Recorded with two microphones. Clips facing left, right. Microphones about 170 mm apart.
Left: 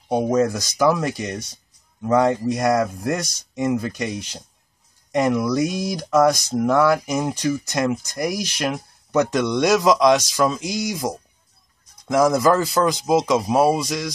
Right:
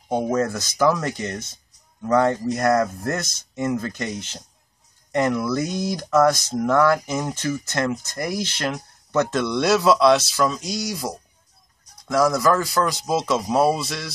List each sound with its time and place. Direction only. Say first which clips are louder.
0.1 s speech: left 3 dB; 10° left (ahead or behind)